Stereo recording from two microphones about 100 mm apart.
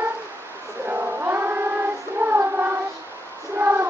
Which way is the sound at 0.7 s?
25° right (ahead or behind).